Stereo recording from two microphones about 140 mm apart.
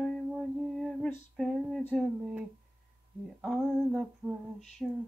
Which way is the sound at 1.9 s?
10° right (ahead or behind).